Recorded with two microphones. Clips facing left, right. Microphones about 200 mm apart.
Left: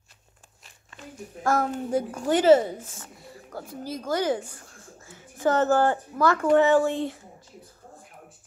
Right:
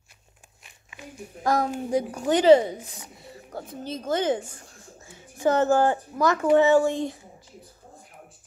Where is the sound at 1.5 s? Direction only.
15° right (ahead or behind).